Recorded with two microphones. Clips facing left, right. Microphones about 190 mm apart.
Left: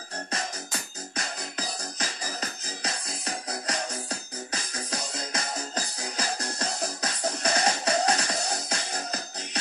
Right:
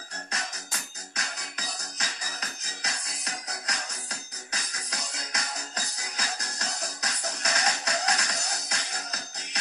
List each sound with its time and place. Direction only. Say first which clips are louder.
2.8 s music: left 5 dB; 30° left (ahead or behind)